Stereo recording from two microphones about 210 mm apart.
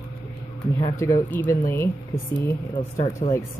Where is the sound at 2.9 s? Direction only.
30° left (ahead or behind).